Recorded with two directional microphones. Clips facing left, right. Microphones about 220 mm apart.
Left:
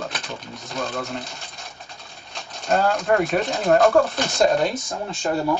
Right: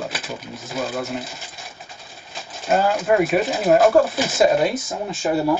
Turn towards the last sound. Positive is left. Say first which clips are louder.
# right 3 dB
turn(degrees=-5)  # may be behind; listen again after turning